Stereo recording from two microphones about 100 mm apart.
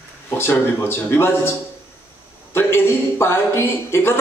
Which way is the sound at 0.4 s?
25° left (ahead or behind).